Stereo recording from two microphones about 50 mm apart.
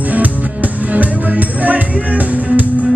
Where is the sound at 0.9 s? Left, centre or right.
Right.